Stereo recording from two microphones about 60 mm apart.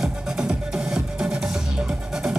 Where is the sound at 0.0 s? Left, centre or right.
Centre.